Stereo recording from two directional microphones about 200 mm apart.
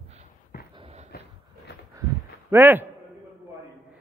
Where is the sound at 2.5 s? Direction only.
10° right (ahead or behind).